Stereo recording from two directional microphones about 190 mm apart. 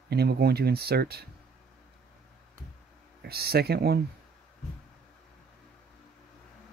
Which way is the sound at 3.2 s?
55° right (ahead or behind).